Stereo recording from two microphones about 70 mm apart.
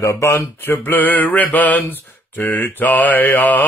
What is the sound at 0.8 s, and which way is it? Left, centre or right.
Mantra, left.